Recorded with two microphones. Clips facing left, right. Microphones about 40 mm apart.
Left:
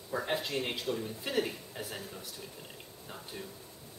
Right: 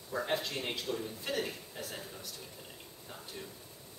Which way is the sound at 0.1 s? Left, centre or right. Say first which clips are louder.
Left 1 dB; centre.